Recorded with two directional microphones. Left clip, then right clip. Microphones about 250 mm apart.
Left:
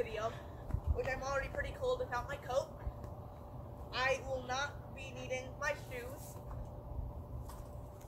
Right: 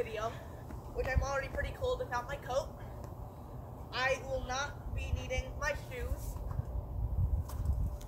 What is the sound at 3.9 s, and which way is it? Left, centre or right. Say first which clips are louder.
A woman's voice: right 2 dB; centre.